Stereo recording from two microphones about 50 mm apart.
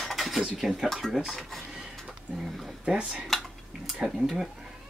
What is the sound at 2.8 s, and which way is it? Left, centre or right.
Speech, centre.